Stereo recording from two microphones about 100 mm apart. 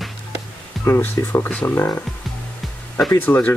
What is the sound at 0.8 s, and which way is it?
Speech, 25° left (ahead or behind).